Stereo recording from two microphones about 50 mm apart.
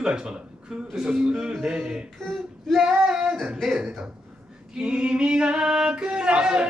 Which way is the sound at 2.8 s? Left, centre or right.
Centre.